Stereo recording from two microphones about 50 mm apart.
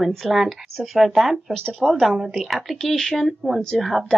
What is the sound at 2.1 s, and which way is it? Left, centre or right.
Speech, centre.